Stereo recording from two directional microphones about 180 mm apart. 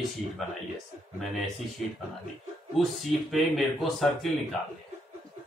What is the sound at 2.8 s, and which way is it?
Speech, centre (ahead or behind).